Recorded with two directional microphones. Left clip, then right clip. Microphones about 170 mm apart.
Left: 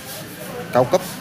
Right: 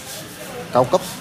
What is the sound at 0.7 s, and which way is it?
Speech, 15° left (ahead or behind).